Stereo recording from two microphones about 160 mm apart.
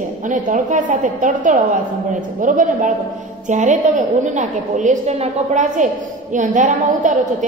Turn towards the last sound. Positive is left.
turn(degrees=-50)  # may be behind; listen again after turning